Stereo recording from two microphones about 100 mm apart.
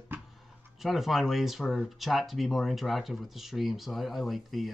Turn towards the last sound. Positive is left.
turn(degrees=0)  # may be behind; listen again after turning